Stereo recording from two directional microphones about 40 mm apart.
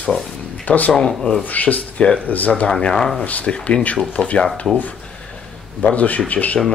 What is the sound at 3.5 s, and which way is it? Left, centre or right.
Speech, left.